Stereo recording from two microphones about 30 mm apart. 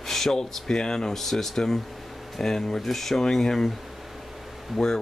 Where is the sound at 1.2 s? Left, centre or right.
Centre.